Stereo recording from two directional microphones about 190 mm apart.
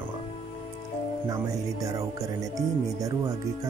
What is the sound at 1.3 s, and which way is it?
A man's voice, 15° right (ahead or behind).